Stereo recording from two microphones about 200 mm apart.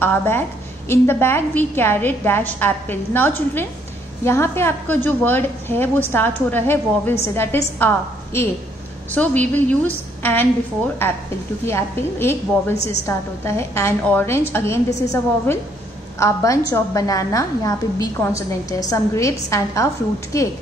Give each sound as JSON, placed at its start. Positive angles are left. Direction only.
{"t": 0.0, "sound": "a woman's voice", "side_deg": 10}
{"t": 11.6, "sound": "a woman's voice", "side_deg": 10}
{"t": 12.7, "sound": "a woman's voice", "side_deg": 35}
{"t": 13.0, "sound": "a woman's voice", "side_deg": 15}